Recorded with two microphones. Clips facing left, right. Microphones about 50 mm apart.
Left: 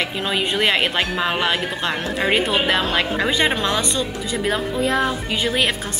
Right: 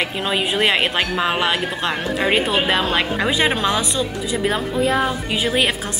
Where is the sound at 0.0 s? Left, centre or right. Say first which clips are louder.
Right 1 dB; centre.